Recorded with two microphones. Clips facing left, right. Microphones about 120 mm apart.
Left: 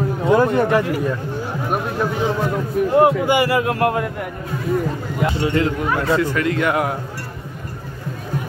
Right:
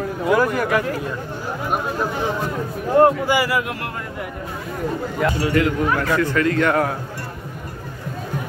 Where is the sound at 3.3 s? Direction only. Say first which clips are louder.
Left 3 dB; 25° left (ahead or behind).